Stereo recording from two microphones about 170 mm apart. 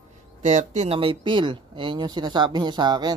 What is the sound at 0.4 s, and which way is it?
Speech, 45° right (ahead or behind).